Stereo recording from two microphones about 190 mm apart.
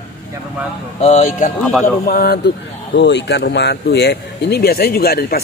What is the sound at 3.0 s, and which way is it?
Speech, 70° left (ahead or behind).